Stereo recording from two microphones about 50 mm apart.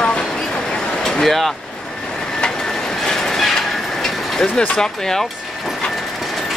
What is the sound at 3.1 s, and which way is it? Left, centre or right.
Train, centre.